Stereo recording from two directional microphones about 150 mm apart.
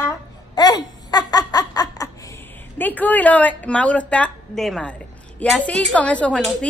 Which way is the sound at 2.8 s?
10° left (ahead or behind).